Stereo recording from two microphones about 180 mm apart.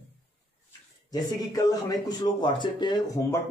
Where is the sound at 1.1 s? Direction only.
20° left (ahead or behind).